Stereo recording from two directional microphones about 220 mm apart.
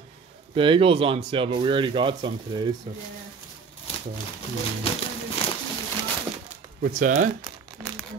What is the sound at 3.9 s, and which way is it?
Crumpling, 25° left (ahead or behind).